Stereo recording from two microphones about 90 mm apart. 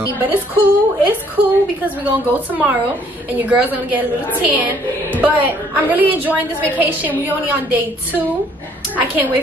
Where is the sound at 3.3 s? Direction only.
20° right (ahead or behind).